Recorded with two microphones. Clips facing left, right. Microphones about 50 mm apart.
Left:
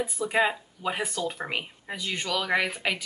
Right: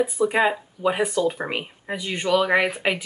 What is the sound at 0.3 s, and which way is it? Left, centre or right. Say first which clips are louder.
Speech: right 4 dB; centre.